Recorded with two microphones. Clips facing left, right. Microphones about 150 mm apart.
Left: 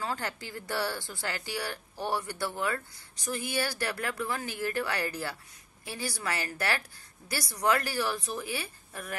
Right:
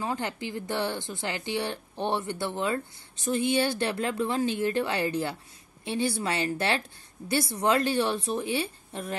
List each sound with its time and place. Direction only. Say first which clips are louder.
0.0 s speech: right 4 dB; 20° right (ahead or behind)